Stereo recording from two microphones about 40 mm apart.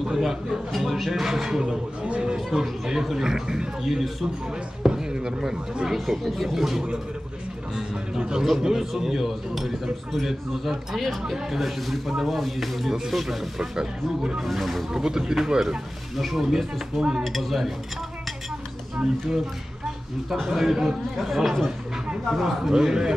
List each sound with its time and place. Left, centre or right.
0.0 s speech: centre
2.0 s speech: right
2.3 s speech: centre
4.8 s speech: centre
5.9 s speech: centre
8.2 s a man's voice: centre
14.9 s speech: centre
16.2 s speech: centre
20.4 s speech: centre